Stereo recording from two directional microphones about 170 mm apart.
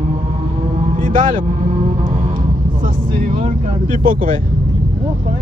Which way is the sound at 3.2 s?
50° right (ahead or behind).